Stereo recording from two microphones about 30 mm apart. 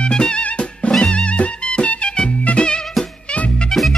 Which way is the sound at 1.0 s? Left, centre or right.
Left.